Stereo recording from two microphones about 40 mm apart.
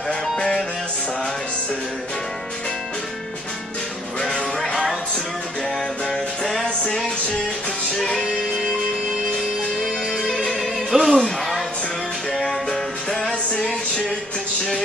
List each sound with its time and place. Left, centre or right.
0.1 s music: left
4.6 s music: centre
6.6 s music: left
8.0 s music: centre
10.1 s music: centre
10.6 s music: centre
11.1 s a sound: centre
12.3 s music: centre
12.6 s music: left